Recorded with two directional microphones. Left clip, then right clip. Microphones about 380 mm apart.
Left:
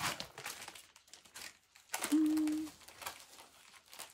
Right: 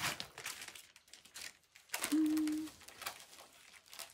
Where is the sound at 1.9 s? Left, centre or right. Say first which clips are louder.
Left 2 dB; centre.